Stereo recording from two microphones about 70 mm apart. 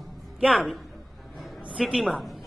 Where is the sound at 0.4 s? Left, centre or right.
Centre.